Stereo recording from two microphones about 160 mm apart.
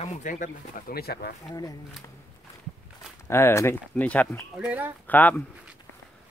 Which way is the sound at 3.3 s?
15° left (ahead or behind).